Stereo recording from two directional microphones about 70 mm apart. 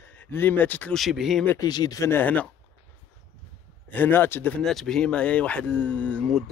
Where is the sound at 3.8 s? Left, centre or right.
Left.